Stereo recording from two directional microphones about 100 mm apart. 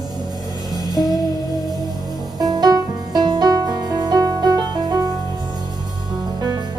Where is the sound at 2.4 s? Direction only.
45° right (ahead or behind).